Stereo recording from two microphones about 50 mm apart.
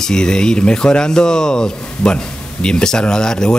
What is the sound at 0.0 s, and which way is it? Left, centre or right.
Speech, centre.